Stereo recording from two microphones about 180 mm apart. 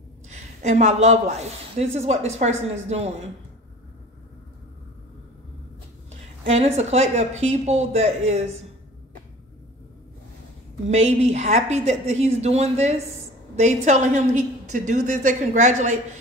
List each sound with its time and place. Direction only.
0.3 s speech: 40° right (ahead or behind)
6.4 s speech: 35° right (ahead or behind)
10.9 s speech: 40° right (ahead or behind)